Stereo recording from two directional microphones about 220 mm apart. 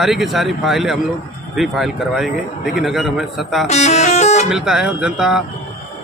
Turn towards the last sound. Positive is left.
turn(degrees=-5)  # may be behind; listen again after turning